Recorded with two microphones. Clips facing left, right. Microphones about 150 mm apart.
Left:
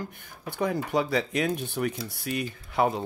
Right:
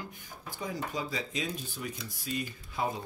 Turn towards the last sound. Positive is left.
turn(degrees=70)  # may be behind; listen again after turning